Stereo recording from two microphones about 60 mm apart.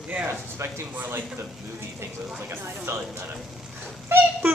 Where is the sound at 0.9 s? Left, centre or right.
Right.